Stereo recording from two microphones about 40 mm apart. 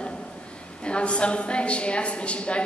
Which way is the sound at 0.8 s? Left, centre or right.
Left.